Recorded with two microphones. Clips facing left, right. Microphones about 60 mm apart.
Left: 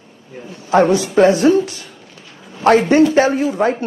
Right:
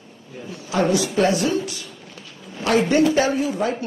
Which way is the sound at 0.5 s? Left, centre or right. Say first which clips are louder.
Left 7 dB; left.